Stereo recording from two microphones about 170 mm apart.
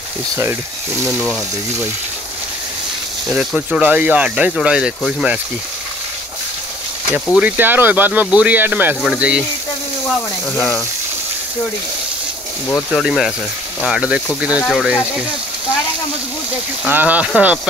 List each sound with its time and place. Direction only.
1.2 s speech: 5° right (ahead or behind)
3.3 s speech: 5° right (ahead or behind)
7.3 s speech: 10° right (ahead or behind)
10.5 s speech: 15° left (ahead or behind)
12.6 s speech: 5° left (ahead or behind)
13.0 s speech: 5° right (ahead or behind)
16.8 s speech: 10° right (ahead or behind)